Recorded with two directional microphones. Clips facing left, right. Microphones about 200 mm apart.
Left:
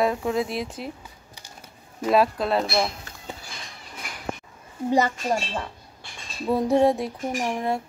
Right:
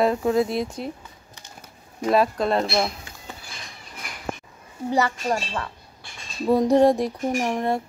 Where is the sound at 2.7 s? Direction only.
15° right (ahead or behind).